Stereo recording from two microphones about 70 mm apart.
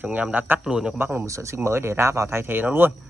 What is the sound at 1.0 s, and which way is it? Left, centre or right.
Speech, right.